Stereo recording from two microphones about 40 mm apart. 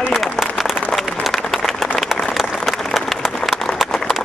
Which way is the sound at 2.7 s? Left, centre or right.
Centre.